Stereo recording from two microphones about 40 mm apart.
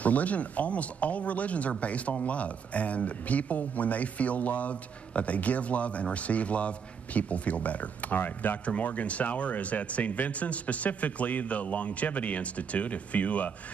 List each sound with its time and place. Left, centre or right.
0.0 s speech: left
8.2 s speech: left
8.6 s speech: left